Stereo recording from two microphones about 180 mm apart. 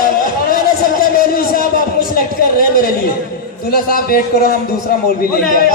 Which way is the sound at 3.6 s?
55° left (ahead or behind).